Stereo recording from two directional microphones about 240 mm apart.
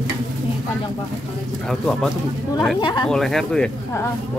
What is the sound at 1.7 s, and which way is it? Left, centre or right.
Speech, centre.